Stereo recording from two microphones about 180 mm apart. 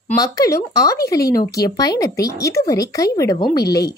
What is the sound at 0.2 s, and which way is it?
A woman's voice, 20° left (ahead or behind).